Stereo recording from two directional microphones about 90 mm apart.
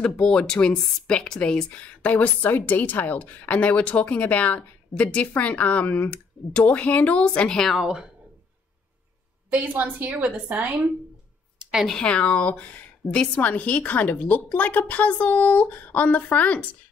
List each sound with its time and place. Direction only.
0.0 s speech: 10° left (ahead or behind)
7.8 s a woman's voice: 10° right (ahead or behind)
9.5 s a woman's voice: 20° right (ahead or behind)
11.5 s a sound: 10° right (ahead or behind)
11.8 s speech: 10° left (ahead or behind)